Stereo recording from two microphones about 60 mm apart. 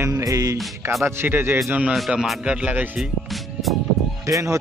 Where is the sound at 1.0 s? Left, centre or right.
Right.